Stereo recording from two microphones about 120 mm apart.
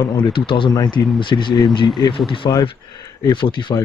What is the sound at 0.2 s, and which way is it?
Speech, 45° left (ahead or behind).